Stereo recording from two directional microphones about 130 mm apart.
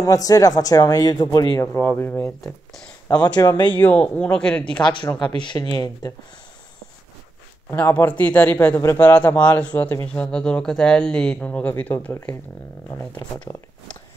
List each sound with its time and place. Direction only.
0.0 s speech: 25° left (ahead or behind)
3.6 s speech: 15° left (ahead or behind)
4.8 s speech: 35° left (ahead or behind)
7.7 s speech: 15° left (ahead or behind)
9.1 s speech: 10° left (ahead or behind)